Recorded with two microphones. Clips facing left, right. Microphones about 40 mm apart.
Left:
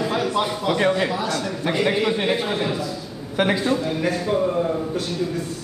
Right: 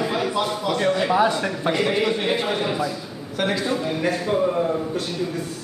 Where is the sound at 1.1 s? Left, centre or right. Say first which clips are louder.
Right 6 dB; right.